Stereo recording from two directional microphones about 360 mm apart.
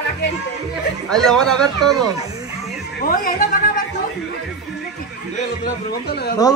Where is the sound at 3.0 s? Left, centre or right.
Left.